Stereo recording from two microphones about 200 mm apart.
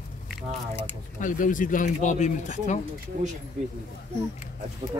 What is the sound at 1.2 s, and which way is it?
Speech, 40° left (ahead or behind).